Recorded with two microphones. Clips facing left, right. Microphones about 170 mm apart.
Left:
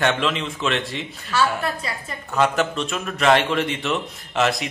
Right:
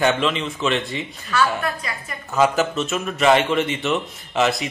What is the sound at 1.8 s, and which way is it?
Speech, 30° left (ahead or behind).